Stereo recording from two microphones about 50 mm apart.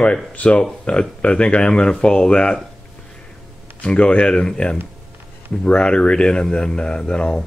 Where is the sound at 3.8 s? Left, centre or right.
Left.